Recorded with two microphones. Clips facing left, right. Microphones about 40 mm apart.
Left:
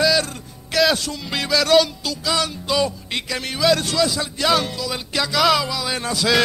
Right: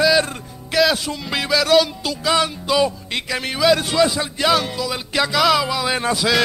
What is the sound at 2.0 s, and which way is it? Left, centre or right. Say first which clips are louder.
Speech: right 3 dB; right.